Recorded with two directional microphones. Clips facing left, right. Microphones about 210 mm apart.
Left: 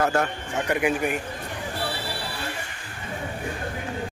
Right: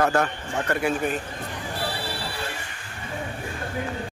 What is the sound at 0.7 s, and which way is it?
Speech, 15° left (ahead or behind).